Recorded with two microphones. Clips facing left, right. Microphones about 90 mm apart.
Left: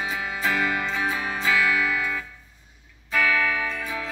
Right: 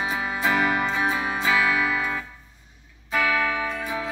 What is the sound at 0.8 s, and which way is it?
Music, 30° right (ahead or behind).